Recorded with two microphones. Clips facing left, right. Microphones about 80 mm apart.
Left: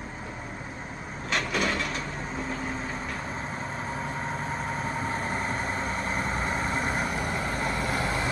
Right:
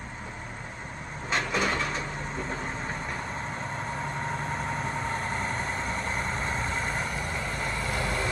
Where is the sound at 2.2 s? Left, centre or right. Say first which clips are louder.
Left 1 dB; centre.